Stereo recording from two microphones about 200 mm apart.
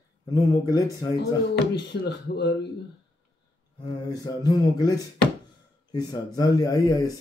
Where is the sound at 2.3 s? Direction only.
55° left (ahead or behind).